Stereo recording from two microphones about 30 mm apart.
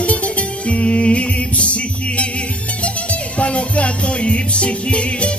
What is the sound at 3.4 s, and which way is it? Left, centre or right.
Music, left.